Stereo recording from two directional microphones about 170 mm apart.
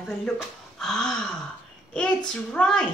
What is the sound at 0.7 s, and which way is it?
Gasp, centre (ahead or behind).